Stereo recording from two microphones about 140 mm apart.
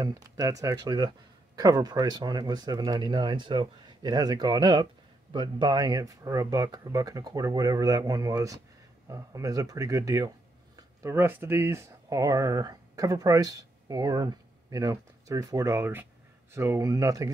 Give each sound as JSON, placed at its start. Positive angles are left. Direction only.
{"t": 0.0, "sound": "speech", "side_deg": -25}